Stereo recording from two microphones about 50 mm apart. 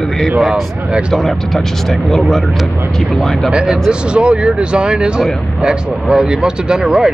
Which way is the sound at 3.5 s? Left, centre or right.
Centre.